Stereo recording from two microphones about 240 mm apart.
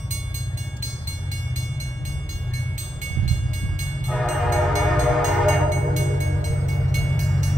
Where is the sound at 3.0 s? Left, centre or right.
Right.